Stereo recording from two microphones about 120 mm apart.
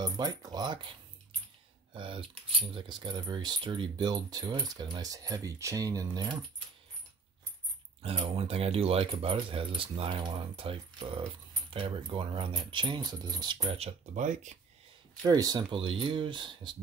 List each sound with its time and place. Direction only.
0.0 s speech: 35° right (ahead or behind)
2.0 s speech: 45° right (ahead or behind)
8.0 s speech: 55° right (ahead or behind); by 13.7 s 35° right (ahead or behind)
13.7 s speech: 75° right (ahead or behind); by 14.6 s 90° right
15.2 s speech: 30° right (ahead or behind)
15.7 s speech: 45° right (ahead or behind)